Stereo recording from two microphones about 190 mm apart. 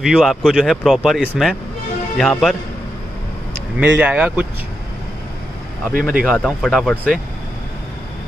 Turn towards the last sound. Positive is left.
turn(degrees=0)  # may be behind; listen again after turning